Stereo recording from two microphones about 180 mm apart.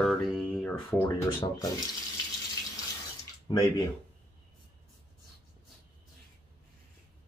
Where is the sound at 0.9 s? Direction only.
20° left (ahead or behind).